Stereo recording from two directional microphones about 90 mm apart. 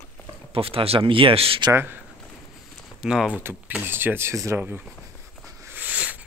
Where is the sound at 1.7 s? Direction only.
25° right (ahead or behind).